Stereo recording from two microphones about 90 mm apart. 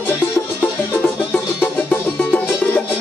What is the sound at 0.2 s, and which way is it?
Music, 25° left (ahead or behind).